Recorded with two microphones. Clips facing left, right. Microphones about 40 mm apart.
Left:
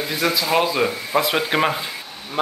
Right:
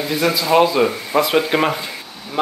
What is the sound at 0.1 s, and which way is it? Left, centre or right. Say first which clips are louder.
Speech: right 4 dB; centre.